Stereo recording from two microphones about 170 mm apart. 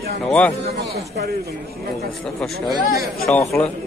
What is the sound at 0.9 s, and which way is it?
Speech, 70° right (ahead or behind).